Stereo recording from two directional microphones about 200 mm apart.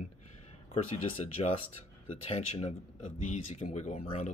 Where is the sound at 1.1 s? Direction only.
30° left (ahead or behind).